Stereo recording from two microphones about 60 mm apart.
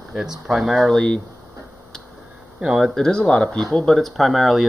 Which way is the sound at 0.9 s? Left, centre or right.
Centre.